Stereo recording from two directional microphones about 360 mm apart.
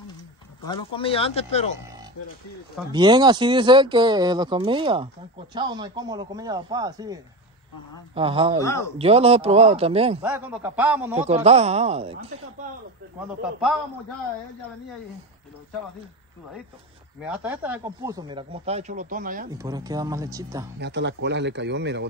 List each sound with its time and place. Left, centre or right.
0.9 s speech: centre
2.9 s speech: centre
8.5 s speech: centre
8.9 s speech: centre
10.2 s a man's voice: centre
11.1 s speech: centre
17.2 s speech: centre; by 19.5 s right
19.5 s speech: centre
20.8 s speech: right